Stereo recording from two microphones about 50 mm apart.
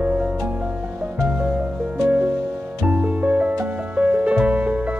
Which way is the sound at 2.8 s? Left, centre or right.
Right.